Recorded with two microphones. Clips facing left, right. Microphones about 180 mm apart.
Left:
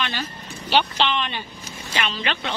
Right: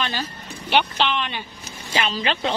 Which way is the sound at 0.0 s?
40° right (ahead or behind).